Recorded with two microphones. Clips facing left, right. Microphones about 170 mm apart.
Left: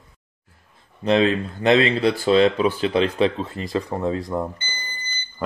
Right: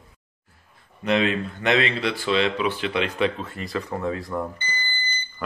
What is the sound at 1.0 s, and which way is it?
Speech, 30° left (ahead or behind).